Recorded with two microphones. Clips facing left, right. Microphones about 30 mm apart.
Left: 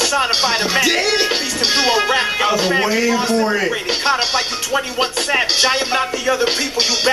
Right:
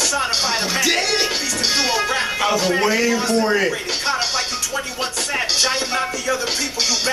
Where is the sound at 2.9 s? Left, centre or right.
Centre.